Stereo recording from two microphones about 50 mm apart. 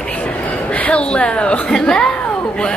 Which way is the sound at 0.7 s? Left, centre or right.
Left.